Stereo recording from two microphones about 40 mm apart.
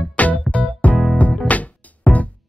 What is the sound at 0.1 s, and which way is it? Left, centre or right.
Music, left.